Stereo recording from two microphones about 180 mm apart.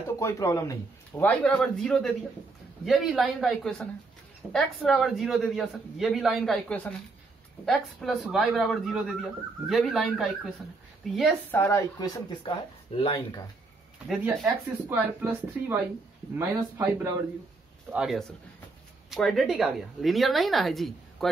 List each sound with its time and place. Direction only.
0.2 s a man's voice: 15° left (ahead or behind); by 10.5 s centre (ahead or behind)
11.5 s speech: 15° left (ahead or behind)
14.0 s a man's voice: centre (ahead or behind)
17.9 s a man's voice: centre (ahead or behind)